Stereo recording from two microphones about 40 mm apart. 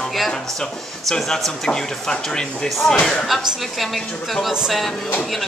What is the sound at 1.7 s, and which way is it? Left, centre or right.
Speech, centre.